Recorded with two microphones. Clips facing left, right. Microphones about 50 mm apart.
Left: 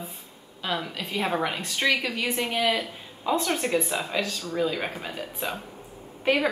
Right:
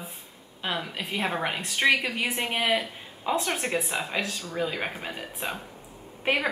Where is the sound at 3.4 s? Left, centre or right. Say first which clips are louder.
Left 3 dB; centre.